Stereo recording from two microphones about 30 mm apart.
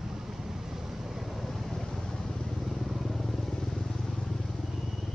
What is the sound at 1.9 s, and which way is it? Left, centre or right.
Vehicle, left.